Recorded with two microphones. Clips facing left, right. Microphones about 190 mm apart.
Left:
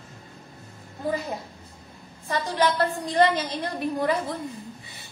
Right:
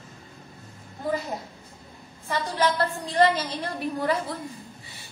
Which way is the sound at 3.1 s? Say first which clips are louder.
Right 1 dB; 15° left (ahead or behind).